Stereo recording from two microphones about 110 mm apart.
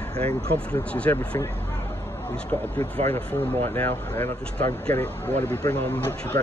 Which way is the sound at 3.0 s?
75° right (ahead or behind).